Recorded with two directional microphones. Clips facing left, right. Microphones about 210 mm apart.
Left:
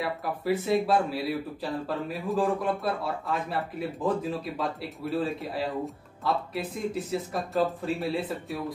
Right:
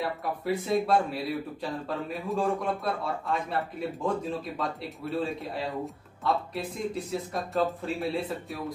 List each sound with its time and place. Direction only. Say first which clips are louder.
0.0 s speech: left 1 dB; centre (ahead or behind)